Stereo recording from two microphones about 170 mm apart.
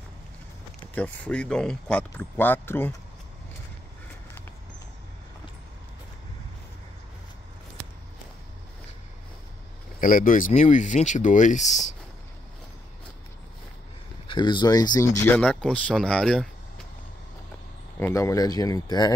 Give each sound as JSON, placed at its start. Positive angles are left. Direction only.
{"t": 0.9, "sound": "speech", "side_deg": 10}
{"t": 9.9, "sound": "speech", "side_deg": 55}
{"t": 14.2, "sound": "speech", "side_deg": 25}
{"t": 15.2, "sound": "speech", "side_deg": 10}
{"t": 17.9, "sound": "speech", "side_deg": 15}